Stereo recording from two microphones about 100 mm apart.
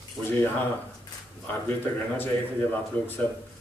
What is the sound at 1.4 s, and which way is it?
Speech, 20° left (ahead or behind).